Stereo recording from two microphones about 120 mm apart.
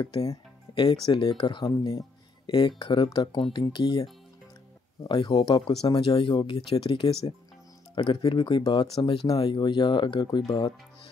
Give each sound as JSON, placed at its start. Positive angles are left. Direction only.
{"t": 0.0, "sound": "speech", "side_deg": 35}